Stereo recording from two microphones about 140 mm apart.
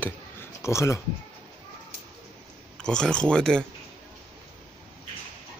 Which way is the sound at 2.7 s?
5° left (ahead or behind).